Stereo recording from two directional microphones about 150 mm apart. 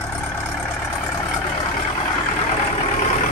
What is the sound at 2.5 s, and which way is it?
Vehicle, 45° left (ahead or behind).